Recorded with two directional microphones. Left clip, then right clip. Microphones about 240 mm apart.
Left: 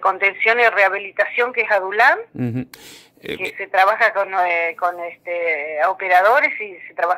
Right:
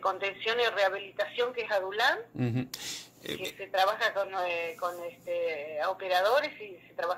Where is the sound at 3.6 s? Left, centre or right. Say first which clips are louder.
Left 13 dB; left.